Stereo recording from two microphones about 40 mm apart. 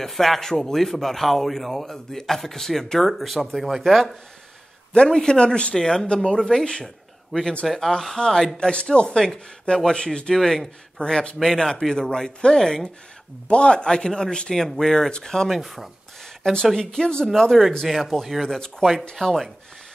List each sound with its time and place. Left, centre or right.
0.0 s speech: centre
4.9 s speech: centre
5.8 s speech: centre
6.0 s speech: left
6.4 s speech: centre
7.3 s speech: centre
8.5 s speech: centre
9.2 s speech: centre
13.5 s speech: left
15.6 s speech: centre
16.8 s speech: centre
18.4 s speech: centre